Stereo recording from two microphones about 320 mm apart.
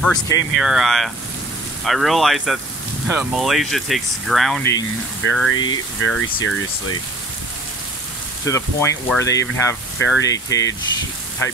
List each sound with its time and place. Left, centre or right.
0.0 s speech: centre
5.2 s speech: left
8.5 s speech: centre